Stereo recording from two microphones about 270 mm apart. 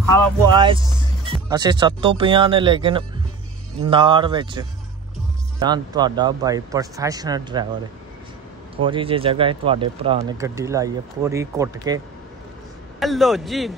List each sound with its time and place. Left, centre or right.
0.0 s speech: centre
0.6 s speech: centre
8.7 s speech: centre
13.0 s a man's voice: centre